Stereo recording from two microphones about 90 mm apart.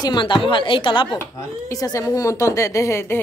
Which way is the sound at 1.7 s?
40° left (ahead or behind).